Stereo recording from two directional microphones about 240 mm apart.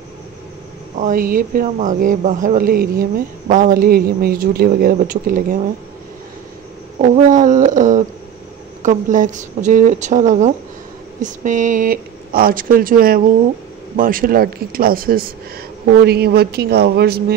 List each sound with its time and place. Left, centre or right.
0.9 s speech: right
7.0 s speech: right